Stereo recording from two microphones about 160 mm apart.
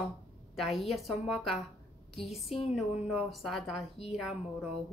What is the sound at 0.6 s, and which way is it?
A woman's voice, centre (ahead or behind).